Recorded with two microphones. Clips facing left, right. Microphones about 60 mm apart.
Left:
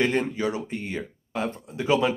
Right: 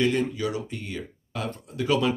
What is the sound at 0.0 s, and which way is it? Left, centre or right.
Speech, left.